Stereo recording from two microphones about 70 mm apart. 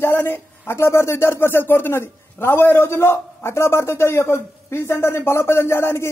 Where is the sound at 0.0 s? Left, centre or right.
Left.